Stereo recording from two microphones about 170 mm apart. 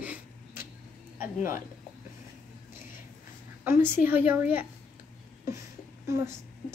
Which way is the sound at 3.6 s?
15° right (ahead or behind).